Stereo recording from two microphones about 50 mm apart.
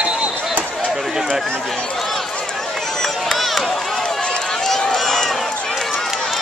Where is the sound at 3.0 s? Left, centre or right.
Centre.